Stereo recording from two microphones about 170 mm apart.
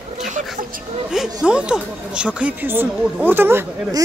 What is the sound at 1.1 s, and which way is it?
Speech, centre (ahead or behind).